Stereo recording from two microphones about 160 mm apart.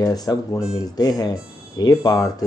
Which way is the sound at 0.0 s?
25° left (ahead or behind).